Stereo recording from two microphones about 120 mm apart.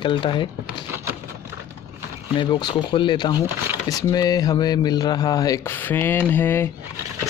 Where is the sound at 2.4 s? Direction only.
40° left (ahead or behind).